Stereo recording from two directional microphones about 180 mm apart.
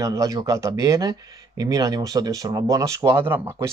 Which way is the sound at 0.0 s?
20° right (ahead or behind).